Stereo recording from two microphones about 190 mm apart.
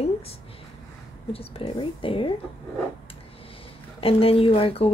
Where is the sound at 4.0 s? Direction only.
30° left (ahead or behind).